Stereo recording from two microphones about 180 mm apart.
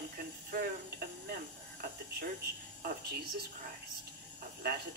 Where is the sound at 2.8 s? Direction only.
60° right (ahead or behind).